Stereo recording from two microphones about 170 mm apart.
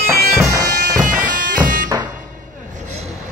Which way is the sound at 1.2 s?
55° right (ahead or behind).